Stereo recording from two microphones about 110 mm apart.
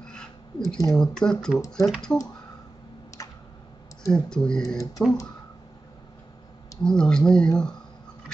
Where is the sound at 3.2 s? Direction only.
30° left (ahead or behind).